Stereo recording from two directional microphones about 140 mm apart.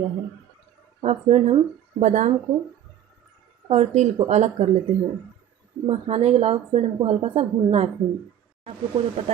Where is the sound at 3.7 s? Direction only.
55° right (ahead or behind).